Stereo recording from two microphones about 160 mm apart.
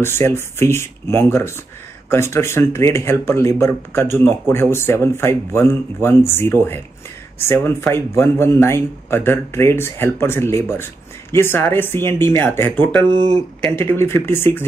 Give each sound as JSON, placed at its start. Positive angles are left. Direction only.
{"t": 0.0, "sound": "speech", "side_deg": 15}
{"t": 13.1, "sound": "speech", "side_deg": -30}
{"t": 13.7, "sound": "speech", "side_deg": 15}